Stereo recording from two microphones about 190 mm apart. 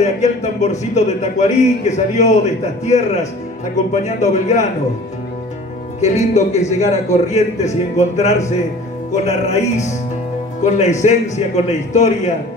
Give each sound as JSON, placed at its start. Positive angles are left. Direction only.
{"t": 0.0, "sound": "a man's voice", "side_deg": 35}
{"t": 5.9, "sound": "a man's voice", "side_deg": 35}